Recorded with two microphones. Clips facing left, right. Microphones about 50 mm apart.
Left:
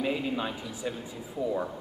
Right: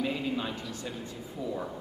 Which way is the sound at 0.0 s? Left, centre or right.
Centre.